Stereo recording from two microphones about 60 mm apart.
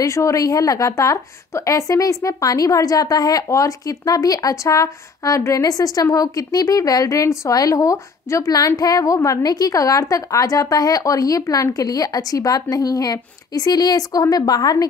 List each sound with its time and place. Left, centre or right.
0.0 s a woman's voice: left
3.4 s a woman's voice: left
5.5 s a woman's voice: left